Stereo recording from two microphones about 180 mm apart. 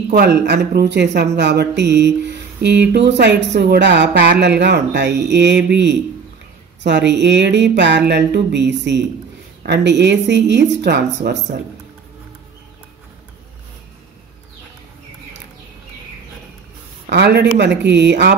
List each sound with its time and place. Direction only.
0.1 s speech: 70° right (ahead or behind)
17.1 s speech: 70° right (ahead or behind)